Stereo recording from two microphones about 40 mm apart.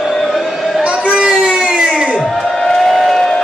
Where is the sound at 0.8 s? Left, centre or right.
Right.